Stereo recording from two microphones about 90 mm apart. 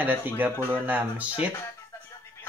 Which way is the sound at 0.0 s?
20° right (ahead or behind).